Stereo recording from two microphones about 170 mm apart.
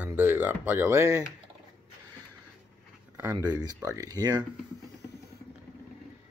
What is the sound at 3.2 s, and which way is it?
Speech, 20° right (ahead or behind).